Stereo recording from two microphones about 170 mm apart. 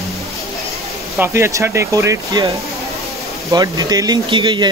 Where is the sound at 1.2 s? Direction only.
15° right (ahead or behind).